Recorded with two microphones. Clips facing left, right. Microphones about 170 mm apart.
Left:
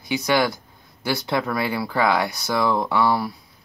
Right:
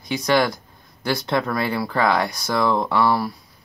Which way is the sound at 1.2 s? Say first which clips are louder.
Right 1 dB; 15° left (ahead or behind).